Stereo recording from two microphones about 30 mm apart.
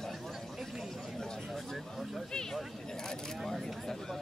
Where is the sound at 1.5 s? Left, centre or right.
Centre.